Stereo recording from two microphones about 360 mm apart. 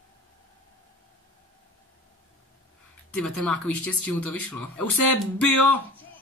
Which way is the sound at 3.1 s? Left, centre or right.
Centre.